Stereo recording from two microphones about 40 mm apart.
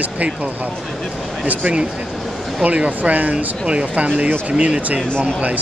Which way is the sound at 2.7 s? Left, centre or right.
Right.